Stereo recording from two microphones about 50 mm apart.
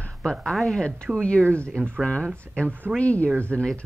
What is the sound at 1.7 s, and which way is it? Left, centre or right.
Speech, right.